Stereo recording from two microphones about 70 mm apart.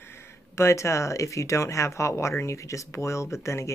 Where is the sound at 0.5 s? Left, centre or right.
Left.